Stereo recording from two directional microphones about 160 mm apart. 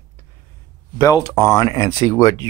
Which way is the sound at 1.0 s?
20° left (ahead or behind).